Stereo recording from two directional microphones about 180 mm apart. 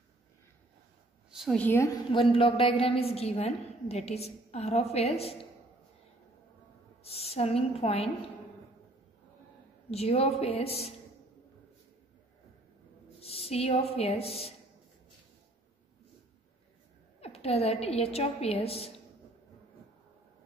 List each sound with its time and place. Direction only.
1.3 s a woman's voice: centre (ahead or behind)
2.1 s a woman's voice: 30° left (ahead or behind)
7.0 s a woman's voice: 35° left (ahead or behind)
9.8 s a woman's voice: 35° left (ahead or behind)
13.2 s a woman's voice: 35° left (ahead or behind)
17.2 s a woman's voice: 35° left (ahead or behind)